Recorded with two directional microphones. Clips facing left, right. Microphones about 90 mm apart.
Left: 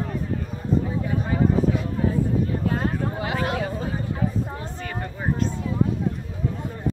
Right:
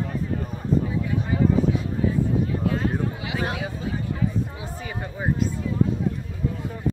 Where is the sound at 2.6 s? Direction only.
40° left (ahead or behind).